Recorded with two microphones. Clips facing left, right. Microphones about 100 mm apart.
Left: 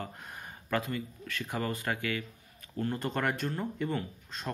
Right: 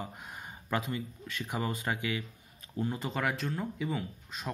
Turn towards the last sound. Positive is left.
turn(degrees=-5)  # may be behind; listen again after turning